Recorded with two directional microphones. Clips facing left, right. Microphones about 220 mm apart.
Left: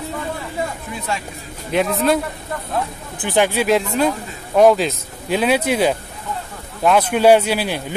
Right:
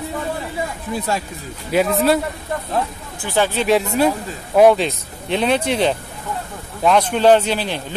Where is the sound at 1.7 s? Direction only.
Centre (ahead or behind).